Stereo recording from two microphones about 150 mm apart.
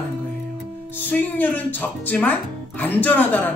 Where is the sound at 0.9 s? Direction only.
10° left (ahead or behind).